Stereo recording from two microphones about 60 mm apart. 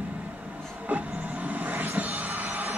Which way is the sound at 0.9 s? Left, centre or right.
Right.